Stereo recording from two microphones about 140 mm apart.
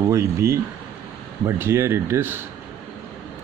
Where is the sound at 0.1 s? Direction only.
20° right (ahead or behind).